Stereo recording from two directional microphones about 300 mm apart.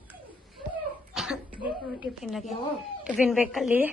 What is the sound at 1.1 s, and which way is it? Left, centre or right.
Cough, centre.